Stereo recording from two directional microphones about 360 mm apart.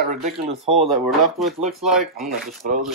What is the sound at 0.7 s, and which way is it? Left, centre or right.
Speech, centre.